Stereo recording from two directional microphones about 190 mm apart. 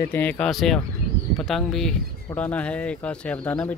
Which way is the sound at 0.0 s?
10° left (ahead or behind).